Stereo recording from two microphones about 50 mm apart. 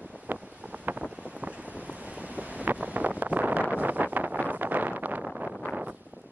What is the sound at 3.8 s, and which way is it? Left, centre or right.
Vehicle, right.